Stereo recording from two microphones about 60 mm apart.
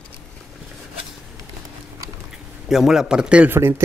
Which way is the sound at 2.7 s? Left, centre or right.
Centre.